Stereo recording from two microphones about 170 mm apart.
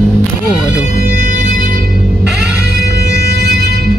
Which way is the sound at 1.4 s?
55° right (ahead or behind).